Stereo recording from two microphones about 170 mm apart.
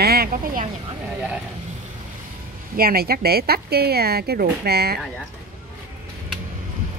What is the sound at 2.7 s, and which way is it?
Speech, 60° right (ahead or behind).